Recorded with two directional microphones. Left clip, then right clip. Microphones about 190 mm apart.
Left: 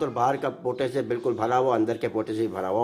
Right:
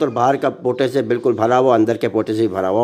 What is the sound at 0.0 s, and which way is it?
A man's voice, 35° right (ahead or behind).